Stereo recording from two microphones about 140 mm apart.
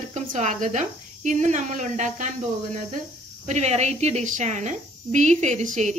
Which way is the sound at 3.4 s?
55° right (ahead or behind).